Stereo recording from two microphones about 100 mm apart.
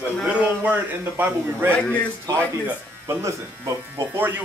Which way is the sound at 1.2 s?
20° right (ahead or behind).